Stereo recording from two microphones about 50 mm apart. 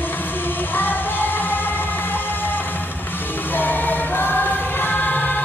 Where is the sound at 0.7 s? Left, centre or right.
Left.